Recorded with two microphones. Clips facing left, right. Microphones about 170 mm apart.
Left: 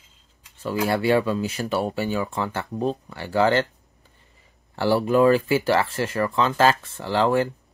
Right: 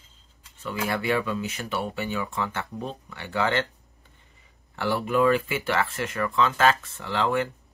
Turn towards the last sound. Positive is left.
turn(degrees=35)  # may be behind; listen again after turning